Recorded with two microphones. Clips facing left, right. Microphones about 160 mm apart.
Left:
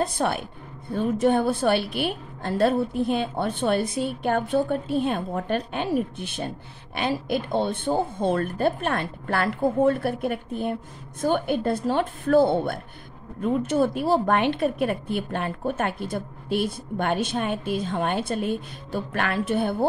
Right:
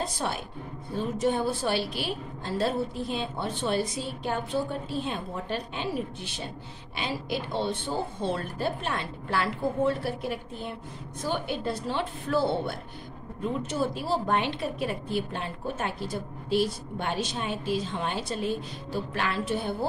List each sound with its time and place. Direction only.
0.0 s a woman's voice: 55° left (ahead or behind)